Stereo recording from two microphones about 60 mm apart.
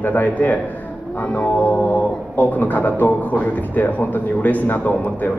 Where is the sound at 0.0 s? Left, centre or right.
Left.